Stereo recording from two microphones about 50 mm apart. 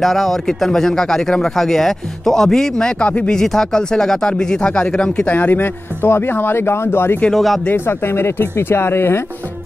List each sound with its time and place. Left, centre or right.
0.0 s speech: centre
3.0 s speech: left
3.3 s speech: centre
5.3 s speech: left
6.0 s speech: left
7.3 s speech: centre
7.7 s speech: left